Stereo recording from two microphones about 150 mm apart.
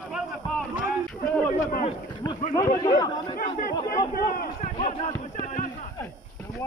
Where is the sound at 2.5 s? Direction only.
30° left (ahead or behind).